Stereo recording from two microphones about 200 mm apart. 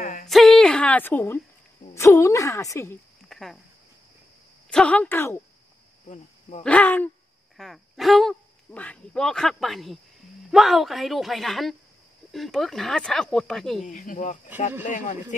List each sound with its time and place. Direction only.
0.0 s a sound: 50° left (ahead or behind)
0.3 s a woman's voice: centre (ahead or behind)
3.3 s cricket: centre (ahead or behind)
4.6 s a woman's voice: 5° left (ahead or behind)
6.0 s speech: 35° left (ahead or behind)
6.6 s a woman's voice: 5° left (ahead or behind)
13.8 s speech: 40° left (ahead or behind)